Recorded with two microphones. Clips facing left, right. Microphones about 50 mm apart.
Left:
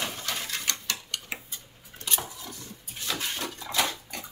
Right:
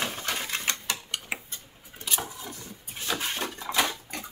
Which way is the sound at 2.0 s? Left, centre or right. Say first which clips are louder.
Right 1 dB; centre.